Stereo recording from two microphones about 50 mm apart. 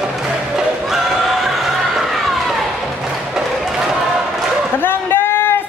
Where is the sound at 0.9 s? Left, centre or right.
Centre.